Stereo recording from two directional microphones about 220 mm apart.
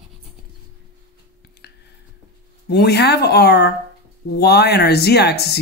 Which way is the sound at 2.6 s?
50° left (ahead or behind).